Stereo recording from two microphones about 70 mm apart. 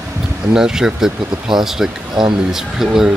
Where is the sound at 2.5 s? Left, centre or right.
Centre.